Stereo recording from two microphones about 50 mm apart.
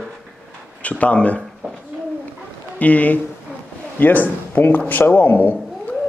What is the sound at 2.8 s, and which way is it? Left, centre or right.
Speech, left.